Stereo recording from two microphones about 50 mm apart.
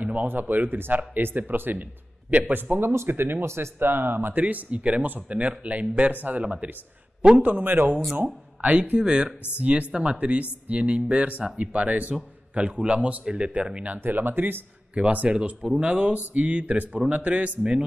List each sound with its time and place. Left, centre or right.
0.0 s speech: right
2.9 s speech: right
3.4 s speech: right
4.4 s speech: right
7.6 s speech: right
8.5 s speech: right
13.9 s speech: right
15.0 s speech: right